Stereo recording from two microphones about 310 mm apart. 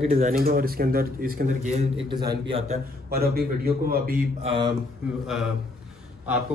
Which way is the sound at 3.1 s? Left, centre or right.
Right.